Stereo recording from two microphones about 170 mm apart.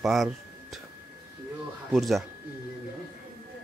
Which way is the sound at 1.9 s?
Centre (ahead or behind).